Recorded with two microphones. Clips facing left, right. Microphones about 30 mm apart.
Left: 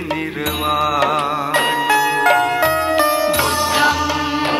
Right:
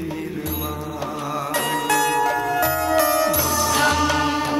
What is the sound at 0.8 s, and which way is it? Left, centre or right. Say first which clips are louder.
Music: left 12 dB; left.